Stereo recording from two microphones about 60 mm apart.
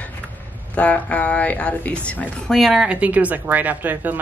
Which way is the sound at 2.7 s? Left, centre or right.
Right.